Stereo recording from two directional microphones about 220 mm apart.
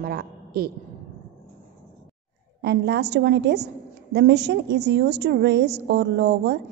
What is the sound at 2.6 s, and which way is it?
A woman's voice, 50° right (ahead or behind).